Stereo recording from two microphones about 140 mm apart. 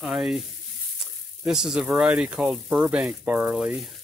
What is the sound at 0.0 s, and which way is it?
Speech, 5° right (ahead or behind).